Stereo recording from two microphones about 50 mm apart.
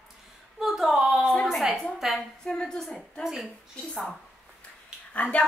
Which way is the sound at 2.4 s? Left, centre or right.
Centre.